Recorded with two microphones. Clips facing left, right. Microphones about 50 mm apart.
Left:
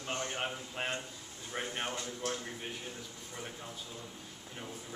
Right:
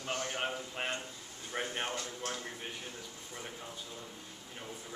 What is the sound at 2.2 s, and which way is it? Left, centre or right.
Speech, right.